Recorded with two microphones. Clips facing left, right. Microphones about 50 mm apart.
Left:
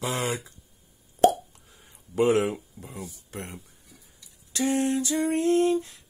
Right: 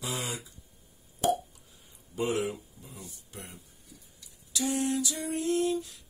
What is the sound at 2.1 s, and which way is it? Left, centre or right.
Speech, left.